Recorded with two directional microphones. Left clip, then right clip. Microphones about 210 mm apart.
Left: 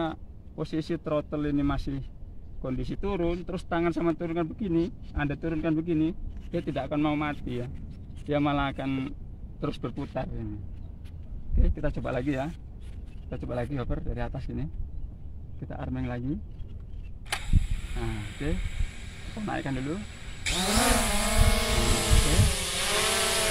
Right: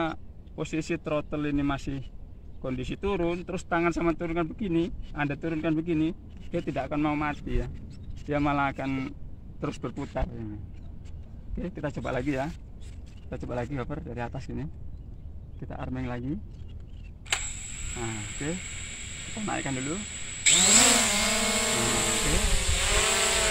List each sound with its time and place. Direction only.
0.0 s speech: 10° left (ahead or behind)
11.5 s speech: 15° left (ahead or behind)
17.3 s a sound: centre (ahead or behind)
19.5 s speech: 20° left (ahead or behind)
20.0 s chainsaw: 5° right (ahead or behind)